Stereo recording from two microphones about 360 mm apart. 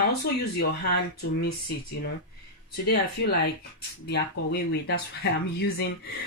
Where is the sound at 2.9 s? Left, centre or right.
Left.